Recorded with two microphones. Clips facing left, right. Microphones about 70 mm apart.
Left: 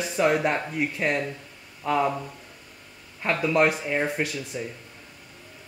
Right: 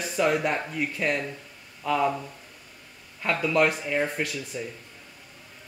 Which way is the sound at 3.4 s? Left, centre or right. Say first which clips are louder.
Left 1 dB; centre.